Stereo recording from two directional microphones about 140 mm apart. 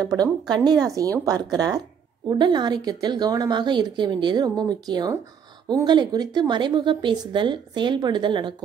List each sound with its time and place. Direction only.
0.0 s a woman's voice: 25° right (ahead or behind)